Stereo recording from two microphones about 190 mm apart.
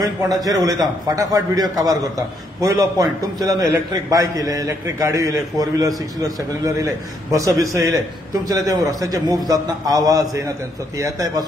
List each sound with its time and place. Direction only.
0.4 s a man's voice: 20° right (ahead or behind)